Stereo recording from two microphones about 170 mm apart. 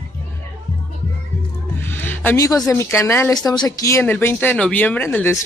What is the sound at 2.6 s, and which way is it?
Speech, 15° left (ahead or behind).